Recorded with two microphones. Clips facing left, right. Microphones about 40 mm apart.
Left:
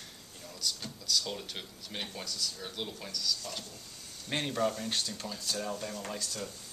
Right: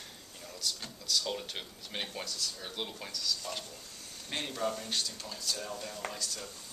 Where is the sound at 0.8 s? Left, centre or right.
Centre.